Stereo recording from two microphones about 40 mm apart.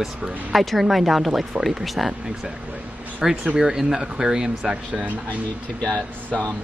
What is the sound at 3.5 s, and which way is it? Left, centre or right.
Speech, centre.